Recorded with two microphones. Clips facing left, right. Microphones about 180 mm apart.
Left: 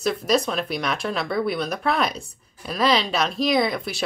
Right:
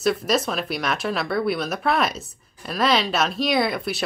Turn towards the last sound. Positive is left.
turn(degrees=0)  # may be behind; listen again after turning